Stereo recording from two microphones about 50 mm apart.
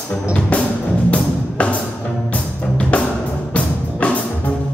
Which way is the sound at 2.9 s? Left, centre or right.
Left.